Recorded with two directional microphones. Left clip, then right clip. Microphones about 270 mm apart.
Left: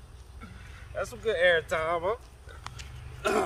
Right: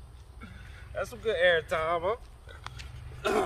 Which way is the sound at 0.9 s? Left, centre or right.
Centre.